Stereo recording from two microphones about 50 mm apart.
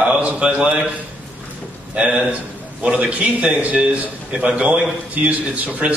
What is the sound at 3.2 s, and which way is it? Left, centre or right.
A man's voice, right.